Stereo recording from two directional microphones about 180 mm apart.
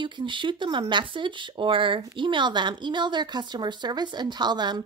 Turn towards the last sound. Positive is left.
turn(degrees=-25)  # may be behind; listen again after turning